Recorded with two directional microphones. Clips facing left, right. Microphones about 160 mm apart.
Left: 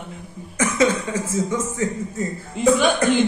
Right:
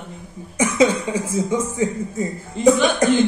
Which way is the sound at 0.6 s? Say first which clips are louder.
Right 2 dB; 15° right (ahead or behind).